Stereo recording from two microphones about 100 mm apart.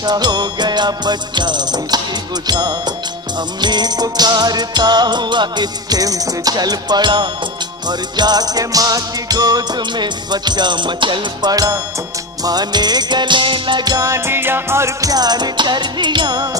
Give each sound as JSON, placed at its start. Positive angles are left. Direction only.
{"t": 0.0, "sound": "music", "side_deg": -45}
{"t": 11.5, "sound": "music", "side_deg": -40}